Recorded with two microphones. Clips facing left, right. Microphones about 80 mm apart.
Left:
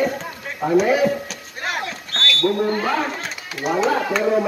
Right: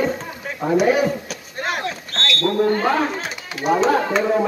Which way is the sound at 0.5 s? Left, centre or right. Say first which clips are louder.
Even; centre.